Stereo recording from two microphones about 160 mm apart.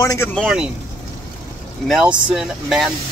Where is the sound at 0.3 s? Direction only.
Centre (ahead or behind).